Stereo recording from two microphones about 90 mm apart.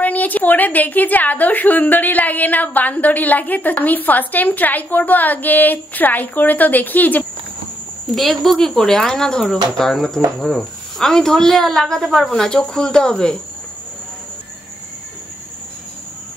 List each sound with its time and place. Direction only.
0.0 s a woman's voice: 20° left (ahead or behind)
8.1 s speech: centre (ahead or behind)